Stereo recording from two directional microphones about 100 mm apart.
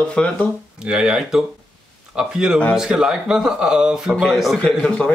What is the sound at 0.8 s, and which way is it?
Speech, 5° right (ahead or behind).